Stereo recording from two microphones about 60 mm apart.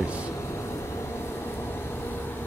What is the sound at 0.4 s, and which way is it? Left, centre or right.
Vehicle, left.